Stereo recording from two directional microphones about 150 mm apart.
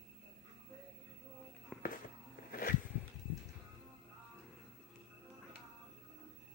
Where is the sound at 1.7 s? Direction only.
Centre (ahead or behind).